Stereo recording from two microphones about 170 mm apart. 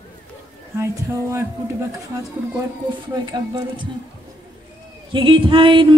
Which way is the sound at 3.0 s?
25° right (ahead or behind).